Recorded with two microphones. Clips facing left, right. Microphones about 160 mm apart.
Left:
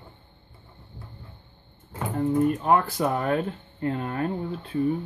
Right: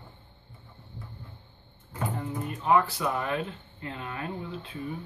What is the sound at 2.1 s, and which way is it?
Speech, 50° left (ahead or behind).